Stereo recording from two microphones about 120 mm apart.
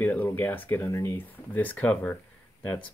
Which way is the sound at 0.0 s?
15° left (ahead or behind).